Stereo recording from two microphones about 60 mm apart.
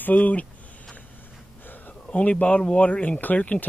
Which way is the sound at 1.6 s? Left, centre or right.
Left.